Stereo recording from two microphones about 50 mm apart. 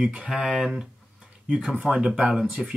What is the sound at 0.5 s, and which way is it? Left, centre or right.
Speech, centre.